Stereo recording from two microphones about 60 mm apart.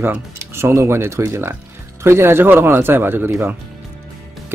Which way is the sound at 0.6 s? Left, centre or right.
Right.